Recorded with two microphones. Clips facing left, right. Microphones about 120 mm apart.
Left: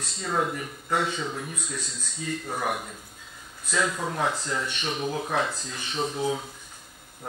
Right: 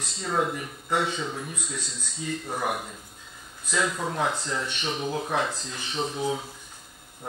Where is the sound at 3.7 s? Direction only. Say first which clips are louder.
Even; centre (ahead or behind).